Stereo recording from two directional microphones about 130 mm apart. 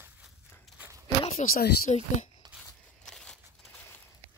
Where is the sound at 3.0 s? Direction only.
5° left (ahead or behind).